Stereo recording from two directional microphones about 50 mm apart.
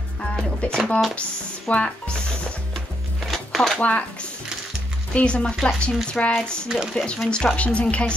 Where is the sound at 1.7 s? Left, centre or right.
Left.